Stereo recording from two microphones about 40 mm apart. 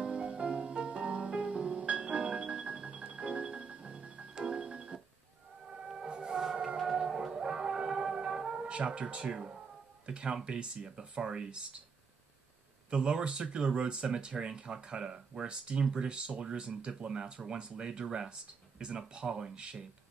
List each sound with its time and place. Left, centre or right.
0.0 s music: right
5.7 s a sound: right
6.8 s music: centre
10.0 s speech: right
12.9 s speech: right